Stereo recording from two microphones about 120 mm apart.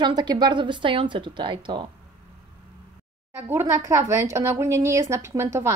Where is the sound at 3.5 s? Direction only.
25° right (ahead or behind).